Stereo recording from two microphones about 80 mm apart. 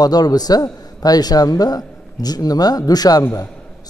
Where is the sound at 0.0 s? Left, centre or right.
Left.